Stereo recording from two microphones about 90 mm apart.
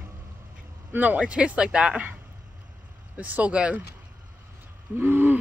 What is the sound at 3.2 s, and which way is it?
Speech, 15° right (ahead or behind).